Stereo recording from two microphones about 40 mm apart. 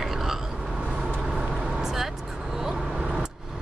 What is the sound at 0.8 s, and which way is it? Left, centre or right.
Vehicle, centre.